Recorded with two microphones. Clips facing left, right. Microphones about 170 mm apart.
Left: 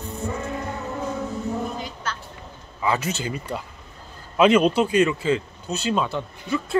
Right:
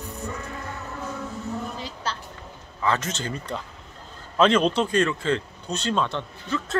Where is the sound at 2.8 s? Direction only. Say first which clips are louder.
Left 1 dB; 10° left (ahead or behind).